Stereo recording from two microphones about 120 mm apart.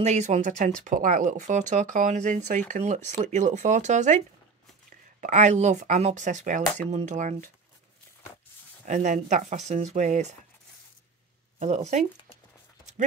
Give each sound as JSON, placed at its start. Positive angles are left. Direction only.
{"t": 0.0, "sound": "speech", "side_deg": -70}
{"t": 6.9, "sound": "speech", "side_deg": -70}
{"t": 8.8, "sound": "speech", "side_deg": -90}
{"t": 11.6, "sound": "speech", "side_deg": -70}